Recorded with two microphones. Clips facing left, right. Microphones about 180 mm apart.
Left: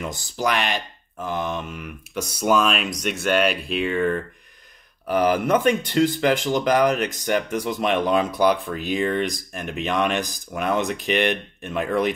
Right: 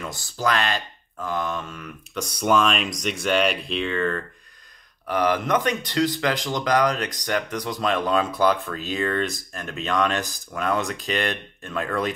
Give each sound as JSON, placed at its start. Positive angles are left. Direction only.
{"t": 0.0, "sound": "speech", "side_deg": 20}
{"t": 5.1, "sound": "speech", "side_deg": 30}